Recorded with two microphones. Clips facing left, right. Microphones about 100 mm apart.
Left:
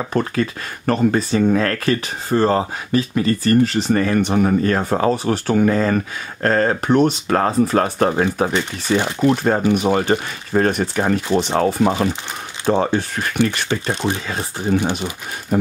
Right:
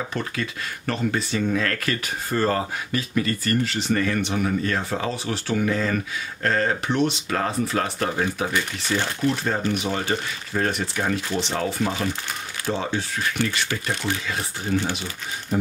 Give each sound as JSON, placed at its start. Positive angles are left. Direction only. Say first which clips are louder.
{"t": 0.1, "sound": "speech", "louder": "left 9 dB", "side_deg": 40}
{"t": 1.9, "sound": "speech", "louder": "left 7 dB", "side_deg": 25}
{"t": 8.8, "sound": "speech", "louder": "left 9 dB", "side_deg": 15}
{"t": 9.2, "sound": "speech", "louder": "left 9 dB", "side_deg": 50}
{"t": 13.7, "sound": "speech", "louder": "left 6 dB", "side_deg": 25}